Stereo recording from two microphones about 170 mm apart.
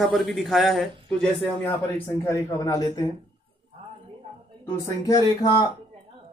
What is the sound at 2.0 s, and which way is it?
A woman's voice, 15° left (ahead or behind).